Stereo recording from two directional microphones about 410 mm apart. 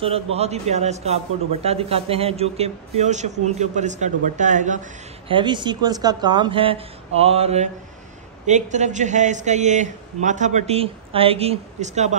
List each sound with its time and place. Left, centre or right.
0.0 s a man's voice: centre